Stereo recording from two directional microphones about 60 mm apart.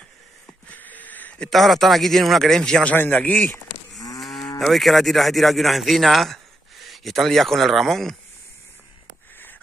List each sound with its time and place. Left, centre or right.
0.7 s a sound: left
1.5 s speech: centre
3.0 s a man's voice: left
4.2 s moo: centre
6.9 s speech: centre